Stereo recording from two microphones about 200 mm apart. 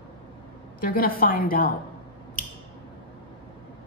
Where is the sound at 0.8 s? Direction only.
45° left (ahead or behind).